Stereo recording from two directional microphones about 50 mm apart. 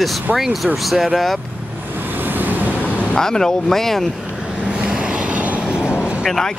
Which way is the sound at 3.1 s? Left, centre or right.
Centre.